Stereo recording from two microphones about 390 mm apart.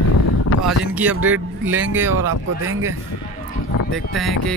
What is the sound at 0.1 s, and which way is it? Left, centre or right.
Wind, left.